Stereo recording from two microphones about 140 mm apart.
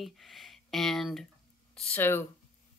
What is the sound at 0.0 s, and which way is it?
Speech, centre (ahead or behind).